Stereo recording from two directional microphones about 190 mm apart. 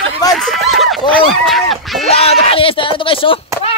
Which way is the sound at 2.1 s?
30° left (ahead or behind).